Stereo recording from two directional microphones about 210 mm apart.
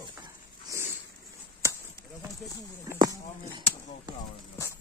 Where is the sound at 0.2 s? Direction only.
15° right (ahead or behind).